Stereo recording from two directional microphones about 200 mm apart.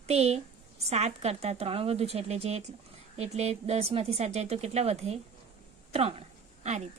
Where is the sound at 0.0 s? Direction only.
30° right (ahead or behind).